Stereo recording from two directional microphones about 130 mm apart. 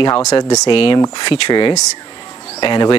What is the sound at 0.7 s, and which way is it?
Speech, 40° left (ahead or behind).